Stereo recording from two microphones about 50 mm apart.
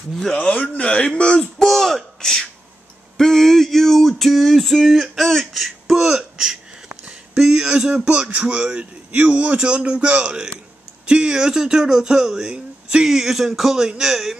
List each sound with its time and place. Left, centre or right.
0.3 s speech: left
1.7 s speech: centre
3.2 s a sound: centre
7.3 s a man's voice: centre
13.0 s speech: centre